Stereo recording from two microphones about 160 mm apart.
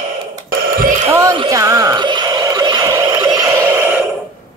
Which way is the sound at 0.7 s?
55° right (ahead or behind).